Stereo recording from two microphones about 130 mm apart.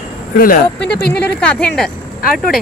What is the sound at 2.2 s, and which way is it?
Speech, 90° left.